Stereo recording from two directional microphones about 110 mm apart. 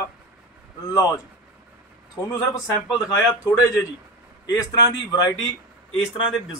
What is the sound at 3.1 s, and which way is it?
Speech, 20° left (ahead or behind).